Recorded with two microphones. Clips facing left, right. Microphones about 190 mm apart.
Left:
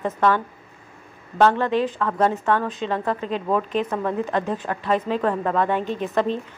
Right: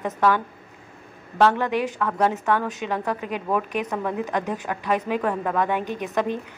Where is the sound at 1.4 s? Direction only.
10° right (ahead or behind).